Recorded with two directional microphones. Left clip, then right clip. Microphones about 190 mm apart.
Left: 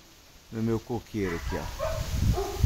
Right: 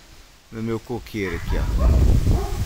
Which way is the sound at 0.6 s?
5° right (ahead or behind).